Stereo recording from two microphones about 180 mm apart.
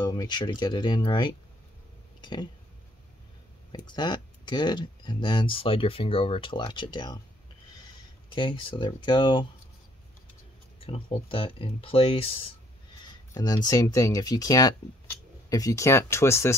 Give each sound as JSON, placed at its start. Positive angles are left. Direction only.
{"t": 0.0, "sound": "speech", "side_deg": 25}
{"t": 3.7, "sound": "speech", "side_deg": 25}
{"t": 8.3, "sound": "speech", "side_deg": 25}
{"t": 10.9, "sound": "speech", "side_deg": 30}